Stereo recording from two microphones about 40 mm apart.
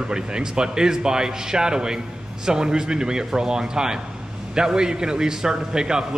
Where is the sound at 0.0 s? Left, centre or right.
Right.